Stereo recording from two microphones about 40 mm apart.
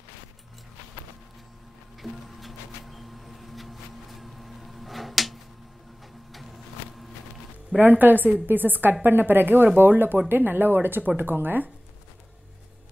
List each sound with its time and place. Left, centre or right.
2.0 s printer: centre
6.3 s a sound: centre
7.8 s a woman's voice: right